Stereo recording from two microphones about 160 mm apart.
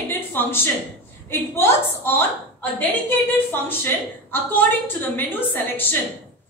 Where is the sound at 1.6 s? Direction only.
15° left (ahead or behind).